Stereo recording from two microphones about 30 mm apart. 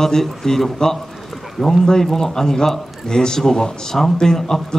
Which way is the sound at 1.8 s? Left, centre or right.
Centre.